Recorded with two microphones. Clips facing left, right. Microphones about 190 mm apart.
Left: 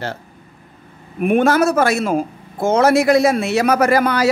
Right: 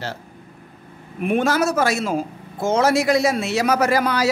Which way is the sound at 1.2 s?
55° left (ahead or behind).